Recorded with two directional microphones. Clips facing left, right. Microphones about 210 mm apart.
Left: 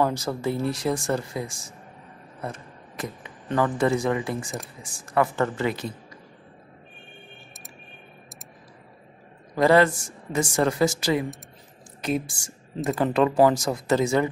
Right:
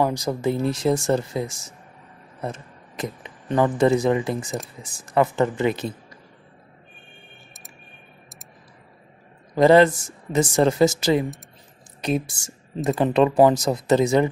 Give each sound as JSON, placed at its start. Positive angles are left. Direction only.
{"t": 0.0, "sound": "speech", "side_deg": -15}
{"t": 9.6, "sound": "speech", "side_deg": -20}